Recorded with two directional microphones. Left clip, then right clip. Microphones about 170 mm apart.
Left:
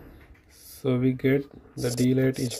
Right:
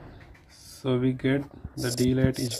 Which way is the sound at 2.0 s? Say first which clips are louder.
Left 1 dB; 50° left (ahead or behind).